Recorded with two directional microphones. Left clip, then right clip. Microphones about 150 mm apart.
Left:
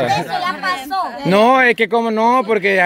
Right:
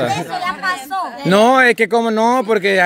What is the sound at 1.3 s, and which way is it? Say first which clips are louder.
Speech: right 1 dB; 35° right (ahead or behind).